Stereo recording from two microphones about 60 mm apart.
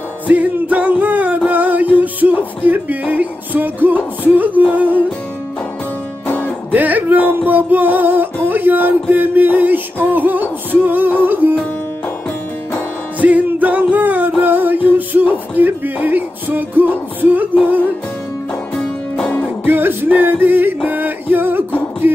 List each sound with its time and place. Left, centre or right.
0.3 s music: right
4.4 s humming: right
6.2 s music: left
6.7 s music: right
13.2 s music: right
19.6 s music: right